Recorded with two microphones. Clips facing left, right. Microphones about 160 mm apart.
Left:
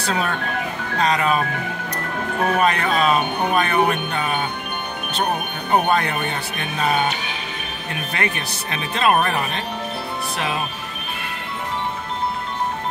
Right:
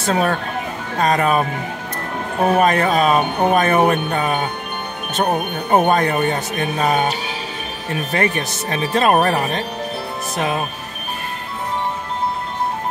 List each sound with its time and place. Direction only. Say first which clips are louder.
0.0 s speech: right 5 dB; 45° right (ahead or behind)
2.6 s speech: right 3 dB; 45° right (ahead or behind)
5.7 s speech: right 4 dB; 45° right (ahead or behind)